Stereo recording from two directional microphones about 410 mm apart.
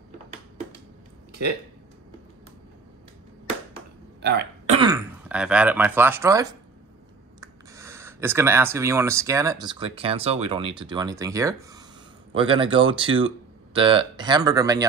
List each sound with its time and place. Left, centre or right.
4.2 s throat clearing: right
4.7 s speech: centre